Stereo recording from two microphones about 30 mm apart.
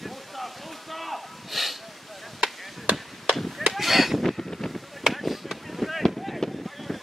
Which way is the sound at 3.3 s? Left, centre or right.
Centre.